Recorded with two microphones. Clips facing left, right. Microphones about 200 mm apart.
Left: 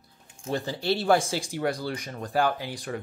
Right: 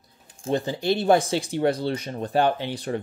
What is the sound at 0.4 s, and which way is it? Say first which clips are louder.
Speech: right 5 dB; 20° right (ahead or behind).